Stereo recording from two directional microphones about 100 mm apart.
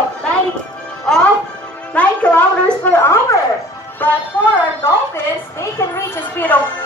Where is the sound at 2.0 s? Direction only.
15° left (ahead or behind).